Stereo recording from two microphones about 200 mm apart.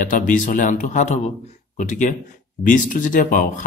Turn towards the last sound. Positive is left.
turn(degrees=40)  # may be behind; listen again after turning